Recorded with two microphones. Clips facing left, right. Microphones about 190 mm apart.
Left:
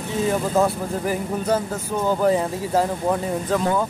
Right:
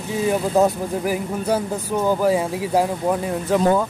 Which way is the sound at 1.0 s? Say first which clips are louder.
Even; 10° right (ahead or behind).